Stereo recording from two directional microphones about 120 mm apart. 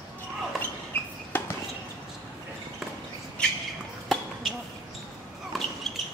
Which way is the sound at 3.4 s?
10° left (ahead or behind).